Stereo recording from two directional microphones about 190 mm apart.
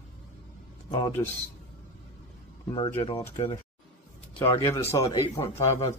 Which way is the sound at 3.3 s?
25° left (ahead or behind).